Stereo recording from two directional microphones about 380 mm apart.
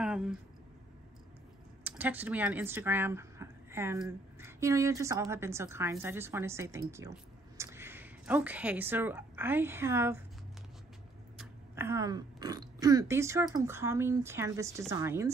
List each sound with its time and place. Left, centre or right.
0.0 s a sound: centre
1.9 s speech: centre
11.3 s speech: centre